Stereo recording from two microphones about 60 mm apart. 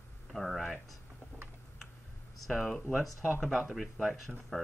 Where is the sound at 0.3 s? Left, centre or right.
Centre.